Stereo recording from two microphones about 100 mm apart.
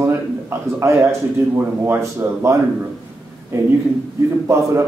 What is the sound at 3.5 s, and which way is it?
Speech, 25° right (ahead or behind).